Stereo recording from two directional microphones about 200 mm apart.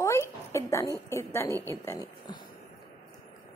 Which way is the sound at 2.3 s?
20° left (ahead or behind).